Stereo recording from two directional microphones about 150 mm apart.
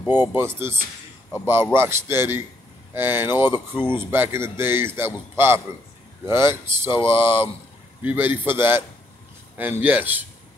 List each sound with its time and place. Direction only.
0.0 s speech: 15° right (ahead or behind)